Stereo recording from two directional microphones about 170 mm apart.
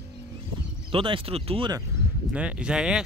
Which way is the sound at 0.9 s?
30° right (ahead or behind).